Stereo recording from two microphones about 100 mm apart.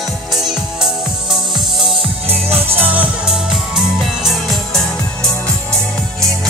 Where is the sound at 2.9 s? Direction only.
5° right (ahead or behind).